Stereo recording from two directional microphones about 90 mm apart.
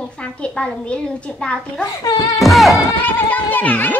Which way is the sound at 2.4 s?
Centre (ahead or behind).